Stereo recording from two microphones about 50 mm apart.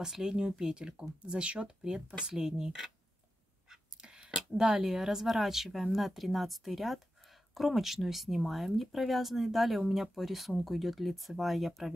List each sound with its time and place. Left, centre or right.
0.0 s speech: centre
3.6 s a sound: centre
4.6 s speech: centre